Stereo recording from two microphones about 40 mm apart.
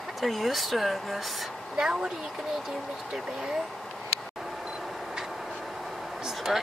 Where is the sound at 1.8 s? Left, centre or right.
Right.